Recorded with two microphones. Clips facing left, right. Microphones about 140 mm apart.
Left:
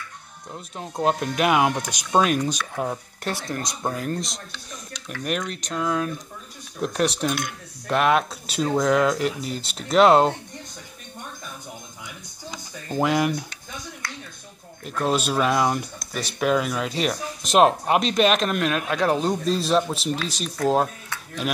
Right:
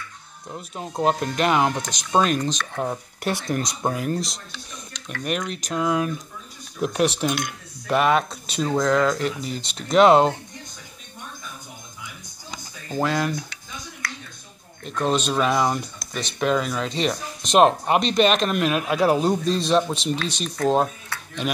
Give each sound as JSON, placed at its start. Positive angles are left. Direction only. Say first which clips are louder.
{"t": 0.5, "sound": "speech", "louder": "right 2 dB", "side_deg": -5}
{"t": 3.3, "sound": "speech", "louder": "right 4 dB", "side_deg": -15}
{"t": 3.9, "sound": "speech", "louder": "right 2 dB", "side_deg": -5}
{"t": 6.8, "sound": "speech", "louder": "right 2 dB", "side_deg": -5}
{"t": 12.9, "sound": "speech", "louder": "left 2 dB", "side_deg": 15}
{"t": 14.9, "sound": "speech", "louder": "right 1 dB", "side_deg": 5}